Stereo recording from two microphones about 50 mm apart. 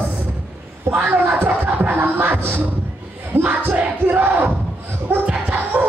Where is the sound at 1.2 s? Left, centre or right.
Right.